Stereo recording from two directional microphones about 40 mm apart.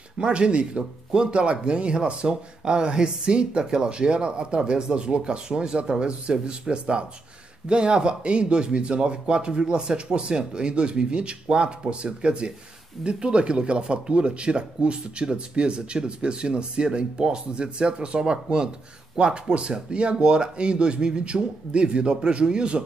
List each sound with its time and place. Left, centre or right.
0.2 s speech: right